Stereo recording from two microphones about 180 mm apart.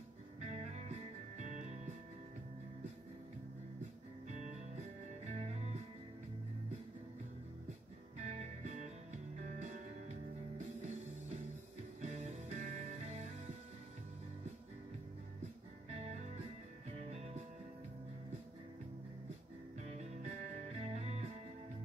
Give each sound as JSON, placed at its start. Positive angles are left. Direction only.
{"t": 0.5, "sound": "music", "side_deg": -40}
{"t": 5.3, "sound": "music", "side_deg": -40}
{"t": 8.2, "sound": "music", "side_deg": -40}
{"t": 12.0, "sound": "music", "side_deg": -45}
{"t": 16.0, "sound": "music", "side_deg": -40}
{"t": 19.9, "sound": "music", "side_deg": -40}